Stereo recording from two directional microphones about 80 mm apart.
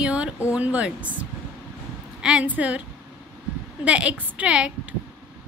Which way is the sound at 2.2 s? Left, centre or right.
Centre.